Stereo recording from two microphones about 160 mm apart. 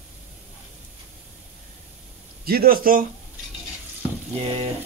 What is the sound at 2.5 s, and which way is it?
Speech, 65° right (ahead or behind).